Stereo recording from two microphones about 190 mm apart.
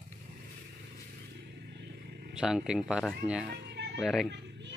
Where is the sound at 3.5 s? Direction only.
60° right (ahead or behind).